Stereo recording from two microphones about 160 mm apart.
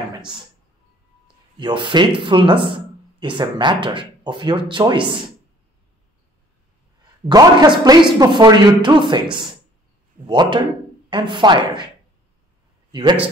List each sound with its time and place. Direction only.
1.2 s speech: 30° right (ahead or behind)
7.2 s a woman's voice: 25° right (ahead or behind)
12.9 s a woman's voice: 30° right (ahead or behind)